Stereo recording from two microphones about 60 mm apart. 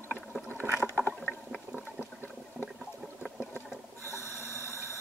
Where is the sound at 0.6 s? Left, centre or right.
Right.